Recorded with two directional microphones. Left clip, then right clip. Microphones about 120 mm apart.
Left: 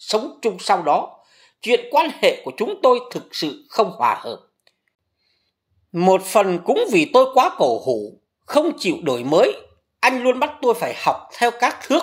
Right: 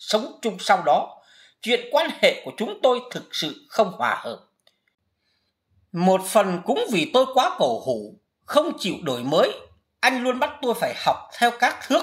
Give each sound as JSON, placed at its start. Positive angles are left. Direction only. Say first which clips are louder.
{"t": 0.0, "sound": "speech", "louder": "left 3 dB", "side_deg": 20}
{"t": 5.9, "sound": "speech", "louder": "left 4 dB", "side_deg": 20}